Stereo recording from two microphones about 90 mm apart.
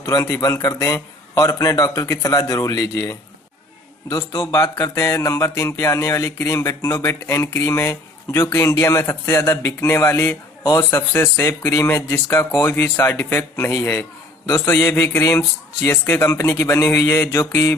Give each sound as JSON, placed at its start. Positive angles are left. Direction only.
{"t": 0.0, "sound": "a man's voice", "side_deg": 40}
{"t": 10.6, "sound": "a man's voice", "side_deg": 45}
{"t": 10.9, "sound": "speech", "side_deg": 30}